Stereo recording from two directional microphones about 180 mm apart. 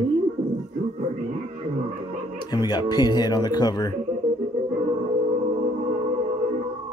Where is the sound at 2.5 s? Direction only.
20° left (ahead or behind).